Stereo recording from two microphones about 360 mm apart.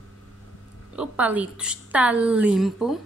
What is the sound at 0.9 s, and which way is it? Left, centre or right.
A woman's voice, centre.